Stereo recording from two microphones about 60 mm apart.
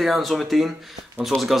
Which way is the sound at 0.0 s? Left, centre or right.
Centre.